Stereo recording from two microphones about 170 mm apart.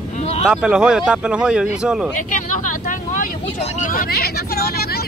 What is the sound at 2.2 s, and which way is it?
Vehicle, 50° left (ahead or behind).